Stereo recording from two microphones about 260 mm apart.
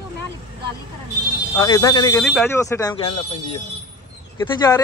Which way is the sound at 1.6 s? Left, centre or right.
Centre.